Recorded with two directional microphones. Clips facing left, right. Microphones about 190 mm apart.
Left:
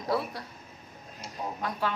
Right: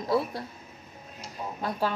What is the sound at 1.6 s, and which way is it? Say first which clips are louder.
Speech: right 3 dB; 35° right (ahead or behind).